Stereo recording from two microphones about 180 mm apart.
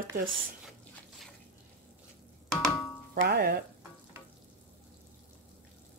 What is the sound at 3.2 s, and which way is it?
Speech, 60° right (ahead or behind).